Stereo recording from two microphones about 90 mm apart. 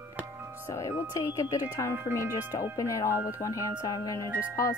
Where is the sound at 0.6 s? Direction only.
35° left (ahead or behind).